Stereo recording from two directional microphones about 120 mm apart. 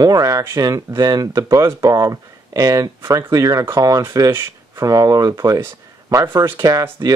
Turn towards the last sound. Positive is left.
turn(degrees=-30)  # may be behind; listen again after turning